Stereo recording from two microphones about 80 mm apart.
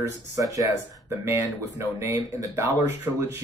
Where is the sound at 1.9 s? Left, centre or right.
Right.